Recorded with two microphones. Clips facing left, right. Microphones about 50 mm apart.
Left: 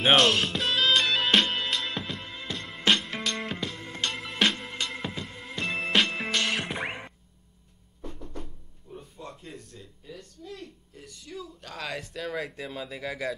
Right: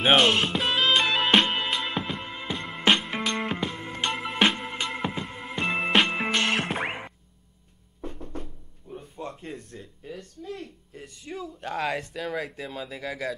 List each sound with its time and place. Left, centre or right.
0.0 s music: centre
8.9 s a sound: right
12.0 s speech: centre